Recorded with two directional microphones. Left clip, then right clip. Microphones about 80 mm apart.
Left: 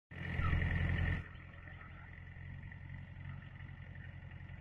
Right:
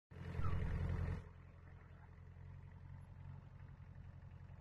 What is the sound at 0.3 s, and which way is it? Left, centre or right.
Vehicle, right.